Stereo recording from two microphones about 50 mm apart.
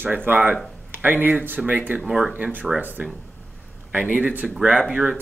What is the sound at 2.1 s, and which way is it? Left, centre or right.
Speech, centre.